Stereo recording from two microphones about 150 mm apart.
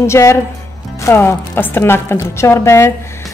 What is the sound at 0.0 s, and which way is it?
A woman's voice, 20° left (ahead or behind).